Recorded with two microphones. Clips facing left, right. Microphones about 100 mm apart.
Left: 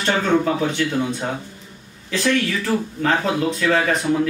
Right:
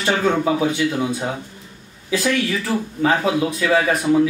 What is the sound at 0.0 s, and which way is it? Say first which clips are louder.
A man's voice: even; 10° right (ahead or behind).